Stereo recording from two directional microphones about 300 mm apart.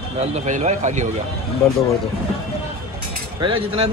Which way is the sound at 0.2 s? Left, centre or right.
Right.